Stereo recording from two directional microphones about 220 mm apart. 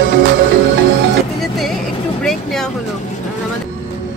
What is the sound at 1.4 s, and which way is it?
Vehicle, centre (ahead or behind).